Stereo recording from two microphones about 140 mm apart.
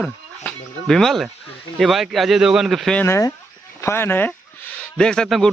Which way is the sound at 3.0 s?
20° left (ahead or behind).